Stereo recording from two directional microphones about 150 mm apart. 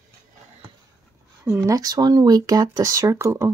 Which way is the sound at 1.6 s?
25° right (ahead or behind).